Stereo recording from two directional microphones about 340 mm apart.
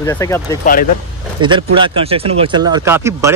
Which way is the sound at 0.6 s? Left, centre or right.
Left.